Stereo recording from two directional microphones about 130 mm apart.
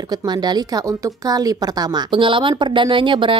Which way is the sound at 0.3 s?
35° right (ahead or behind).